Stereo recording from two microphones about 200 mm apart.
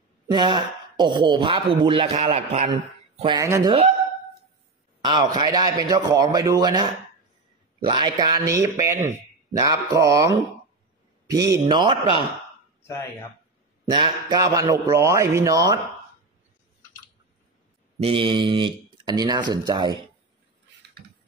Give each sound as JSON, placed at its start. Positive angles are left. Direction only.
{"t": 0.3, "sound": "speech", "side_deg": -20}
{"t": 5.0, "sound": "speech", "side_deg": -20}
{"t": 13.8, "sound": "speech", "side_deg": -20}
{"t": 17.9, "sound": "speech", "side_deg": -30}